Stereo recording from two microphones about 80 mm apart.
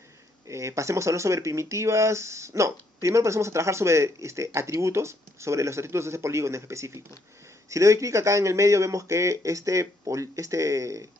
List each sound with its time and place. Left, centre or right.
0.5 s speech: right